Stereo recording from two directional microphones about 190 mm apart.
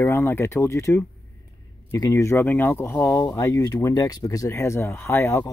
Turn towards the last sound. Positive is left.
turn(degrees=15)  # may be behind; listen again after turning